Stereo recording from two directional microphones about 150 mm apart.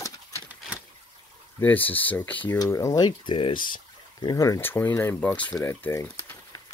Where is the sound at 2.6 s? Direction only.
20° left (ahead or behind).